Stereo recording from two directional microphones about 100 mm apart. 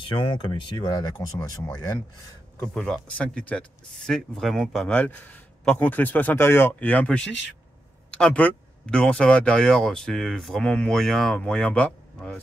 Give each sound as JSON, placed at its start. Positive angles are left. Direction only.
{"t": 0.0, "sound": "speech", "side_deg": 60}
{"t": 2.7, "sound": "speech", "side_deg": 10}
{"t": 4.9, "sound": "speech", "side_deg": 15}